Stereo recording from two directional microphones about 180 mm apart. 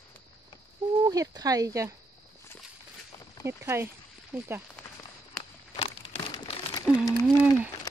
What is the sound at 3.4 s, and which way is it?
Speech, 15° right (ahead or behind).